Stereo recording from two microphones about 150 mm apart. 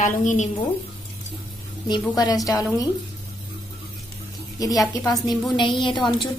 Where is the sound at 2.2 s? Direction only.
25° left (ahead or behind).